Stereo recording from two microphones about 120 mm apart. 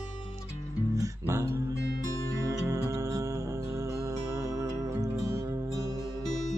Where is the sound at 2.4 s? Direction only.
25° right (ahead or behind).